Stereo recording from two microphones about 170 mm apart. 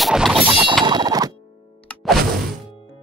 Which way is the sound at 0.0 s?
Centre (ahead or behind).